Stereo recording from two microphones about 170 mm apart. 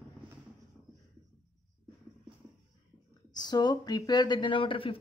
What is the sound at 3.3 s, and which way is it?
Speech, 25° left (ahead or behind).